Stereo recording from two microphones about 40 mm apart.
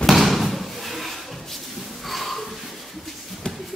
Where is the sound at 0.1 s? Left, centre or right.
Centre.